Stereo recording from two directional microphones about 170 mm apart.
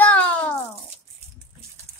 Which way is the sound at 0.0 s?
10° left (ahead or behind).